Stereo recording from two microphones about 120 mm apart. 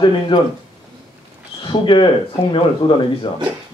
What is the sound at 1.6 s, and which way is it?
Speech, 40° left (ahead or behind).